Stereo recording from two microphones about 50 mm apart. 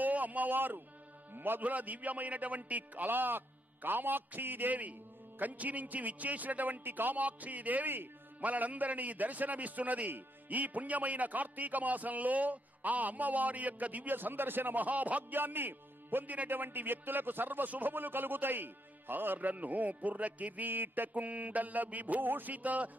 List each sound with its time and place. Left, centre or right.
0.0 s a sound: right
1.3 s a man's voice: right
1.6 s a man's voice: right
8.4 s a man's voice: right
15.3 s a man's voice: right
21.1 s a man's voice: right